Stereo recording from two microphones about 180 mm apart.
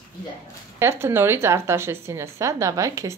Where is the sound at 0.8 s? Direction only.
15° right (ahead or behind).